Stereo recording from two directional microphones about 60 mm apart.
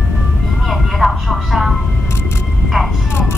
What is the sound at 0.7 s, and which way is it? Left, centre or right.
Vehicle, centre.